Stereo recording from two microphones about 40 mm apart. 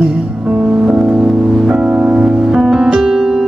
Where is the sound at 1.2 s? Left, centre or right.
Centre.